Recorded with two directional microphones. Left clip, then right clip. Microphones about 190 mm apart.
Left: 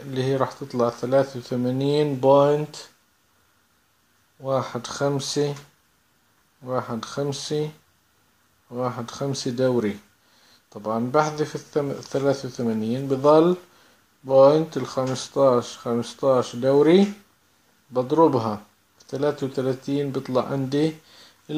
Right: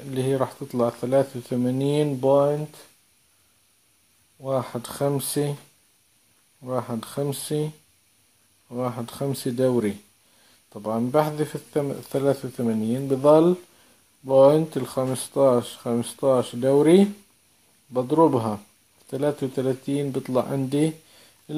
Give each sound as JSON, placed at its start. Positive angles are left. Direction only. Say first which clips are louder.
{"t": 0.1, "sound": "speech", "louder": "left 1 dB", "side_deg": -20}
{"t": 4.4, "sound": "speech", "louder": "left 2 dB", "side_deg": -20}
{"t": 6.6, "sound": "speech", "louder": "left 1 dB", "side_deg": -25}